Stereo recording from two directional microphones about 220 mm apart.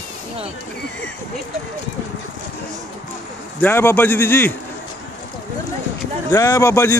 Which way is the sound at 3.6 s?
10° left (ahead or behind).